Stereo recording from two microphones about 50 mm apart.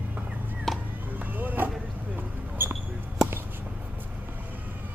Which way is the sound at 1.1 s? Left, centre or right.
Right.